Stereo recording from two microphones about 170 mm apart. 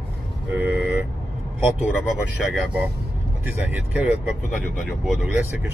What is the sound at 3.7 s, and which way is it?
Speech, 10° right (ahead or behind).